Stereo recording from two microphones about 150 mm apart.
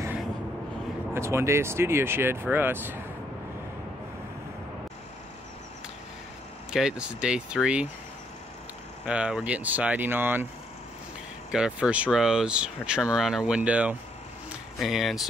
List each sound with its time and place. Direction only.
1.1 s speech: 20° right (ahead or behind)
6.7 s speech: 5° right (ahead or behind)
9.0 s speech: 5° right (ahead or behind)
11.5 s speech: 5° right (ahead or behind)
14.5 s a sound: centre (ahead or behind)